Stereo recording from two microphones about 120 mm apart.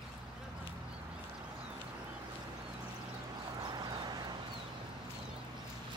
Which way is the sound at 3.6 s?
35° right (ahead or behind).